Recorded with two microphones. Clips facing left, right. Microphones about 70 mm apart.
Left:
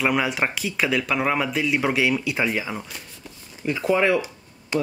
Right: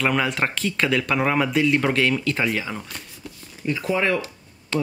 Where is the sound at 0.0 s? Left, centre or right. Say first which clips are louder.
Even; centre.